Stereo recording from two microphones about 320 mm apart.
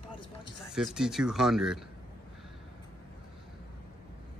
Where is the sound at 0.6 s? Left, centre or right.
Centre.